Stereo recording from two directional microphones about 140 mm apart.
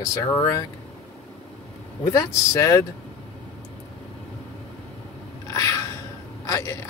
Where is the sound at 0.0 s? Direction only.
20° left (ahead or behind).